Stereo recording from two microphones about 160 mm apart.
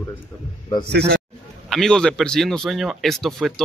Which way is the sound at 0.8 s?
90° right.